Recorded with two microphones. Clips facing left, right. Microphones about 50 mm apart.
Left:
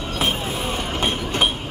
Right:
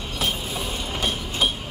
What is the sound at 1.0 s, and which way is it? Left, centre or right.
Train, left.